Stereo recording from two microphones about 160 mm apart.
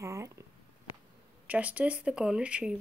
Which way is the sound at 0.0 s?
20° right (ahead or behind).